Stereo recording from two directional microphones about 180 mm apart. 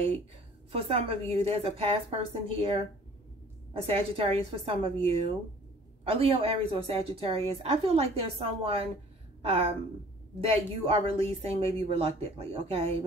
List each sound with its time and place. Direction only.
0.7 s a woman's voice: 30° right (ahead or behind)